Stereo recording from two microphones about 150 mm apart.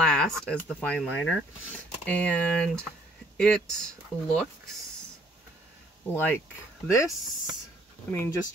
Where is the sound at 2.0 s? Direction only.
5° left (ahead or behind).